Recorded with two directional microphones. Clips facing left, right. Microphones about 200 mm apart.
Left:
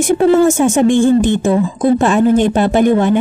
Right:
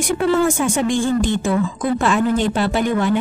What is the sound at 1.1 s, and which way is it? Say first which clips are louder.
Speech: left 6 dB; 20° left (ahead or behind).